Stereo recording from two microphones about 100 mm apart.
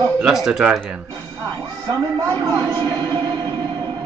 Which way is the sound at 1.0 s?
40° right (ahead or behind).